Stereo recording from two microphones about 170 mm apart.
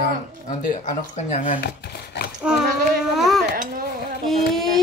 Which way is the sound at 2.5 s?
5° right (ahead or behind).